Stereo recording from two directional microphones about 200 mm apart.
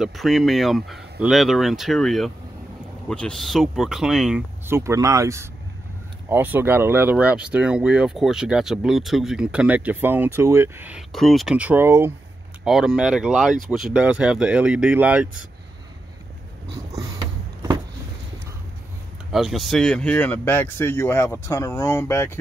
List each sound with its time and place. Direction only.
0.0 s speech: centre (ahead or behind)
16.9 s a sound: 15° right (ahead or behind)
19.3 s speech: centre (ahead or behind)